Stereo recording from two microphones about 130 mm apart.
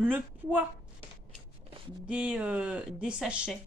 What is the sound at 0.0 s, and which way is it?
Speech, 15° right (ahead or behind).